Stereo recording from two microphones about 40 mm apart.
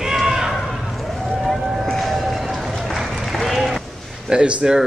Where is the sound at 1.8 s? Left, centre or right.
Centre.